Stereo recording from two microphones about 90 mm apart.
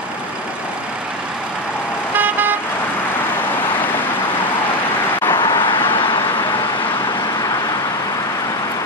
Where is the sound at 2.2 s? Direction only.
20° right (ahead or behind).